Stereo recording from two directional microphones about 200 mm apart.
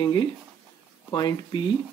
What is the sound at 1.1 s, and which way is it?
Speech, 20° left (ahead or behind).